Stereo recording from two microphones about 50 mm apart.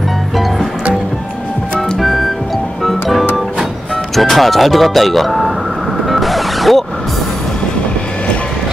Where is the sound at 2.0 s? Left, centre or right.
Centre.